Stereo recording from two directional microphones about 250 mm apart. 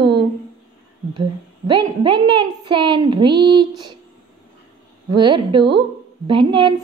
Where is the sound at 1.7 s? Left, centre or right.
Centre.